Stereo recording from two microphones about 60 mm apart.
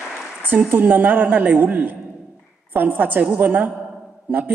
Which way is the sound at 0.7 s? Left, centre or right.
Right.